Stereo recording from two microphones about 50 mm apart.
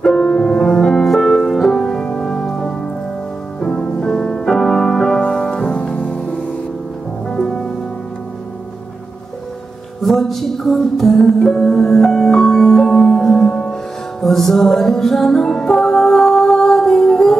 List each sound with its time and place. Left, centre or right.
0.0 s music: centre
7.2 s music: centre
10.0 s music: centre